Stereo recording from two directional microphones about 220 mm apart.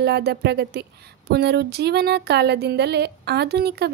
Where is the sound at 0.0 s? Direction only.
45° right (ahead or behind).